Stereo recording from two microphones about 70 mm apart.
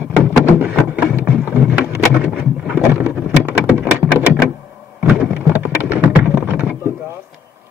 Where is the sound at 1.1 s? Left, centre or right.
Right.